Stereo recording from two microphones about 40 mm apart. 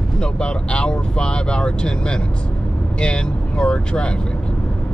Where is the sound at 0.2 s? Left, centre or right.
Left.